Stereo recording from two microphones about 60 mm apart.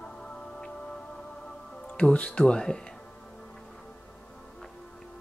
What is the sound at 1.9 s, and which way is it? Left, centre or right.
Speech, centre.